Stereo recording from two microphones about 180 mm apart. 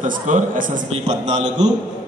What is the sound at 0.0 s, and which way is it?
A man's voice, 45° right (ahead or behind).